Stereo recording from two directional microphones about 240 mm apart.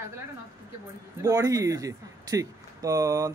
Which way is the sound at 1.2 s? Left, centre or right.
Centre.